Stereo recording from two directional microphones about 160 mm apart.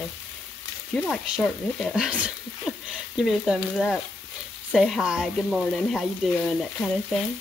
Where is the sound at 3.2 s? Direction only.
Centre (ahead or behind).